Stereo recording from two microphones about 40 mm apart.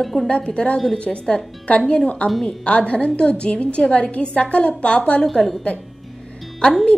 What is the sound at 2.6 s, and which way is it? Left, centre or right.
A woman's voice, left.